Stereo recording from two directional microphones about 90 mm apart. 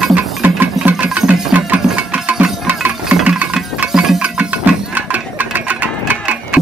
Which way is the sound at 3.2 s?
15° right (ahead or behind).